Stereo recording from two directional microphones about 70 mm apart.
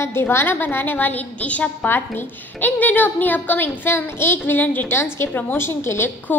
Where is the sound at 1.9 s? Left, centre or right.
Left.